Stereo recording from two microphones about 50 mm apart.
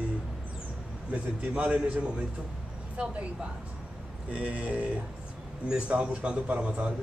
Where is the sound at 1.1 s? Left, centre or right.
Right.